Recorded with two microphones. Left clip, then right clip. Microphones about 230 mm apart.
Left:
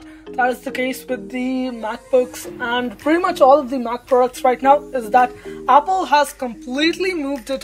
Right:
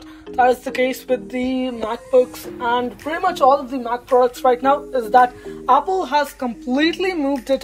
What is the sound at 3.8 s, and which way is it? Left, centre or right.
Speech, left.